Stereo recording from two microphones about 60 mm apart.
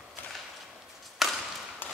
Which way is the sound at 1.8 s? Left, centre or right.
Left.